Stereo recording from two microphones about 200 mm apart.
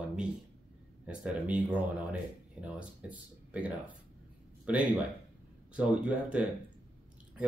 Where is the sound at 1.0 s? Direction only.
5° right (ahead or behind).